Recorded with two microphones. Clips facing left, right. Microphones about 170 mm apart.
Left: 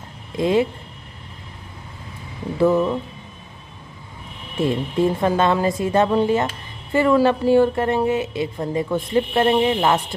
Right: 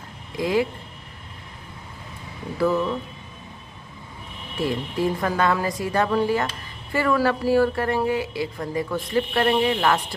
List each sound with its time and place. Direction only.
0.4 s a woman's voice: 25° left (ahead or behind)
2.6 s a woman's voice: 25° left (ahead or behind)
4.6 s a woman's voice: 25° left (ahead or behind)